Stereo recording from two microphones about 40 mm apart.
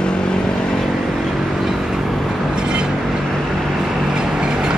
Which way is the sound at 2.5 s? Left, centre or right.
Right.